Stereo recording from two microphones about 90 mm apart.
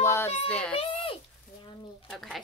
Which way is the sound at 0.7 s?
85° left.